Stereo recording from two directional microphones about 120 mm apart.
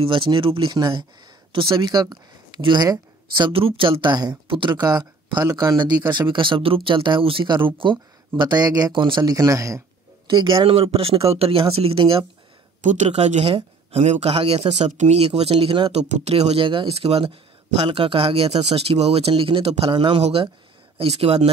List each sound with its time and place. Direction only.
0.0 s speech: 45° right (ahead or behind)
9.3 s speech: 30° right (ahead or behind)
10.2 s speech: 45° right (ahead or behind)
12.8 s speech: 80° right; by 14.9 s 55° right (ahead or behind)
14.9 s speech: 70° right (ahead or behind); by 16.0 s 50° right (ahead or behind)
16.0 s speech: 60° right (ahead or behind); by 20.2 s 40° right (ahead or behind)
20.2 s speech: 60° right (ahead or behind)